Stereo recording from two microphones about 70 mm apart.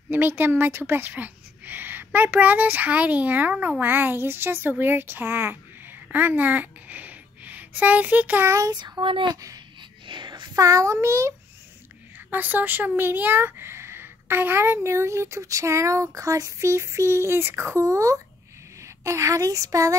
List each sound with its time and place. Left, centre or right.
0.1 s speech: right
8.5 s a child's voice: right
8.7 s a sound: right
10.5 s a child's voice: right
12.3 s speech: right